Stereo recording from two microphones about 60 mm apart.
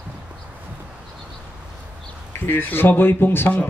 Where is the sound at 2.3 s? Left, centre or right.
Left.